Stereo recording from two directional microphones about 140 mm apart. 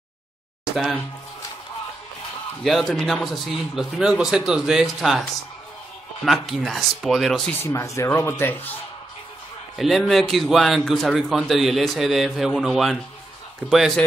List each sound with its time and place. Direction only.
2.6 s a man's voice: centre (ahead or behind)
6.2 s a man's voice: centre (ahead or behind)
7.6 s speech: 20° left (ahead or behind)
9.8 s a man's voice: centre (ahead or behind)